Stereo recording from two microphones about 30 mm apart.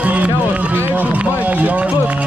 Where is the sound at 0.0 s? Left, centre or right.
Right.